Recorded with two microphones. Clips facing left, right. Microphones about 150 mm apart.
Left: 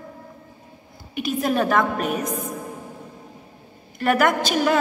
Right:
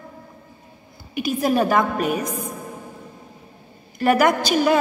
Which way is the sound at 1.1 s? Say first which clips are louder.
Right 2 dB; 5° right (ahead or behind).